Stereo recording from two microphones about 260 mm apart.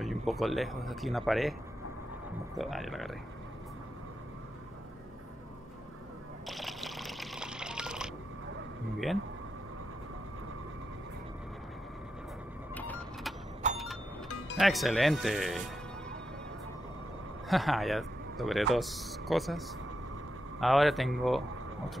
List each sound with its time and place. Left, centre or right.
0.0 s speech: centre
2.5 s speech: centre
6.4 s a sound: centre
12.7 s vehicle: centre
13.6 s vehicle: right
14.6 s speech: centre
17.5 s speech: centre
20.6 s speech: centre